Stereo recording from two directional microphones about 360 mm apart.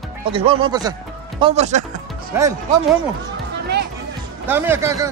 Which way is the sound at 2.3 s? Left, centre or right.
Centre.